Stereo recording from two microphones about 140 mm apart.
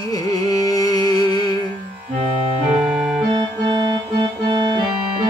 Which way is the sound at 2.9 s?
Centre (ahead or behind).